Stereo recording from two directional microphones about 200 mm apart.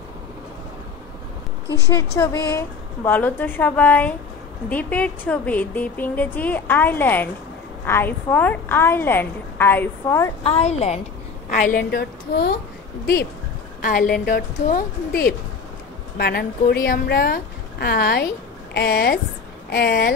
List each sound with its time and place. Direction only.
1.7 s a woman's voice: 15° left (ahead or behind)
10.4 s a woman's voice: 30° left (ahead or behind)
11.4 s a woman's voice: 45° left (ahead or behind)